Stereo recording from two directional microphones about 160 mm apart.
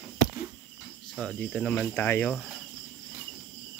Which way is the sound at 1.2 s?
5° left (ahead or behind).